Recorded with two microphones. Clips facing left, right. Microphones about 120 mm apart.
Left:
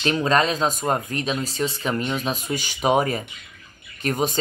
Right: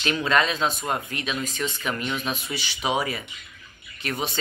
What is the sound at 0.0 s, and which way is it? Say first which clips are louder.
Speech: left 3 dB; 35° left (ahead or behind).